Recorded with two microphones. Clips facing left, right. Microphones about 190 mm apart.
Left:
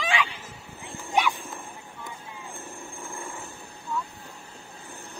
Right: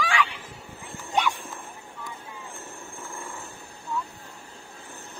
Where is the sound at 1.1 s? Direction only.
10° left (ahead or behind).